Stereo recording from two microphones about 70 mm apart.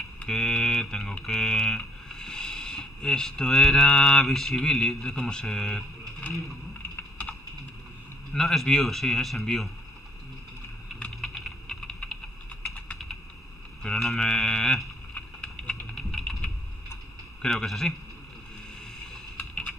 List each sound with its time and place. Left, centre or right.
0.2 s speech: centre
8.3 s speech: centre
11.1 s typing: centre
13.8 s speech: centre
15.1 s a sound: centre
15.9 s typing: centre
17.4 s speech: centre
19.3 s computer keyboard: centre